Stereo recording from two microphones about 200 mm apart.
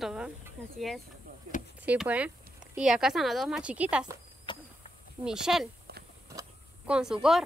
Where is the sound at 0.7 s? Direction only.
Centre (ahead or behind).